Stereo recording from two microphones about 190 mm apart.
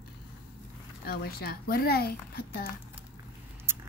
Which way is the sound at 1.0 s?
55° left (ahead or behind).